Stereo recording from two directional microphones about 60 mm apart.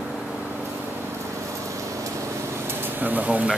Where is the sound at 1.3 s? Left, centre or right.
Right.